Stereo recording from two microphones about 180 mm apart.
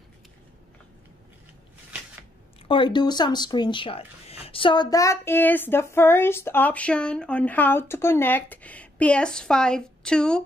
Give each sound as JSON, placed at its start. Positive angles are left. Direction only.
{"t": 2.7, "sound": "speech", "side_deg": 25}